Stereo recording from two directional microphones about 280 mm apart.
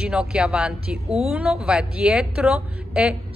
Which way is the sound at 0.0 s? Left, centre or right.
Centre.